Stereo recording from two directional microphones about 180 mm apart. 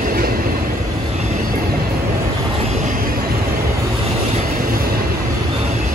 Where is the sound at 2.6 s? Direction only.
35° right (ahead or behind).